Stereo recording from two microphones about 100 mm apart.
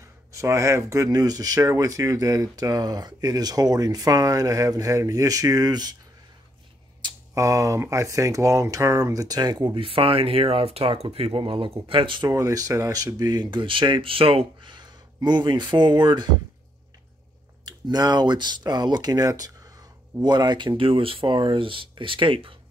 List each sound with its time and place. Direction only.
0.3 s speech: 30° right (ahead or behind)
7.0 s a sound: 50° right (ahead or behind)
7.3 s speech: 35° right (ahead or behind)
9.8 s speech: 65° right (ahead or behind)
12.3 s speech: 35° right (ahead or behind)
17.6 s speech: 45° right (ahead or behind); by 22.6 s 60° right (ahead or behind)